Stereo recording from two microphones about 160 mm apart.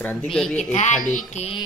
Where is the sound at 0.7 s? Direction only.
45° left (ahead or behind).